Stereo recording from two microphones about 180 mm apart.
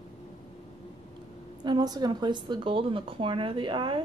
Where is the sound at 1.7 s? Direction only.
20° right (ahead or behind).